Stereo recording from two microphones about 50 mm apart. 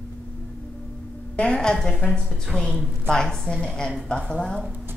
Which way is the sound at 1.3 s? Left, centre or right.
Centre.